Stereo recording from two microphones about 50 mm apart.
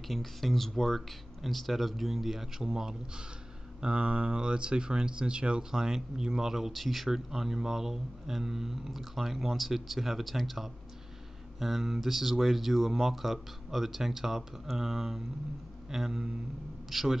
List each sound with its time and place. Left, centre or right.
0.1 s speech: centre